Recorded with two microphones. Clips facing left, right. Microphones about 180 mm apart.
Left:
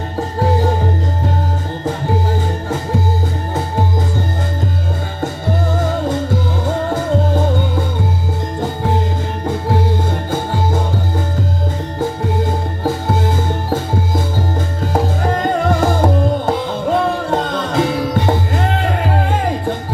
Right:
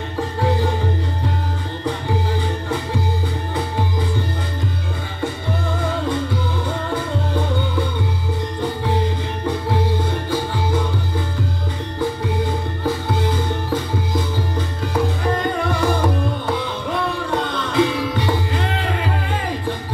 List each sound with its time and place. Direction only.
0.4 s music: 45° left (ahead or behind)
5.2 s music: 45° left (ahead or behind)
10.3 s music: 45° left (ahead or behind)
12.0 s music: 45° left (ahead or behind)